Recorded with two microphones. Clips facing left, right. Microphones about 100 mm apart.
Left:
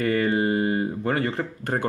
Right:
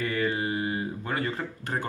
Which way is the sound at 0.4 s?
40° left (ahead or behind).